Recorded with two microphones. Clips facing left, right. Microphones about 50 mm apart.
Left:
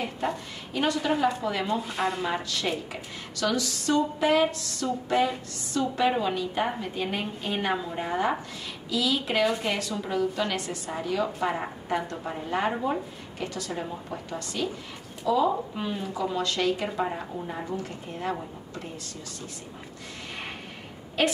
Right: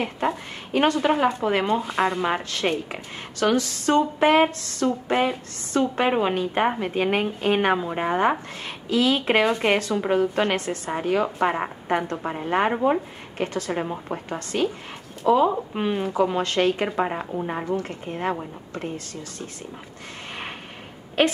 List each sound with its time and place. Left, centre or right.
0.7 s a woman's voice: right
21.2 s a woman's voice: right